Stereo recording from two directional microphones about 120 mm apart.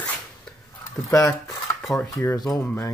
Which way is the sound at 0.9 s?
30° left (ahead or behind).